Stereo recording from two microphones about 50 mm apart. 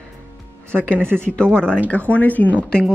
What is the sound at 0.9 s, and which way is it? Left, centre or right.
Speech, right.